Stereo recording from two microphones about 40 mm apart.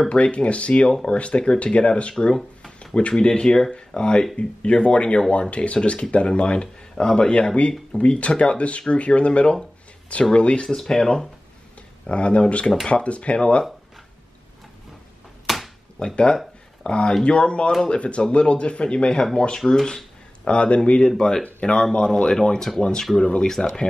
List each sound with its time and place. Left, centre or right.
0.1 s speech: left
10.7 s speech: centre
12.1 s speech: left
15.4 s a sound: centre
16.0 s speech: left
20.4 s speech: left
21.2 s speech: centre